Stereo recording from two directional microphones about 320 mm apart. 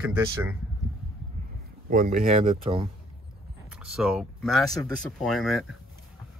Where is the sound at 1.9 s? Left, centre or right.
Right.